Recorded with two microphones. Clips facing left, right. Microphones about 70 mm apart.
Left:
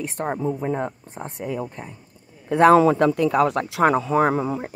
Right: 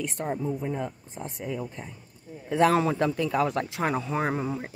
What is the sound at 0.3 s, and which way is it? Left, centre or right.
Speech, left.